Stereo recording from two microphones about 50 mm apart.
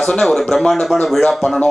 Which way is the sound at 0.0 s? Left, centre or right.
Centre.